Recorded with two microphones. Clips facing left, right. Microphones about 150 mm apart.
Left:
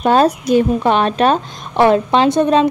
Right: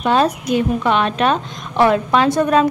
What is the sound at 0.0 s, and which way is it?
A woman's voice, 40° left (ahead or behind).